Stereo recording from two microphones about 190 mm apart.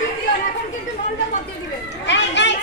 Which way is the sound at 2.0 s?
65° left (ahead or behind).